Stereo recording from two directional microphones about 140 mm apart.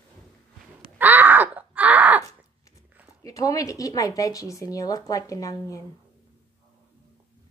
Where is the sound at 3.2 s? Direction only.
25° left (ahead or behind).